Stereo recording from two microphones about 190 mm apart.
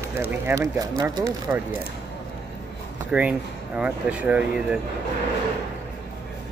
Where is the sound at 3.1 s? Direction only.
5° right (ahead or behind).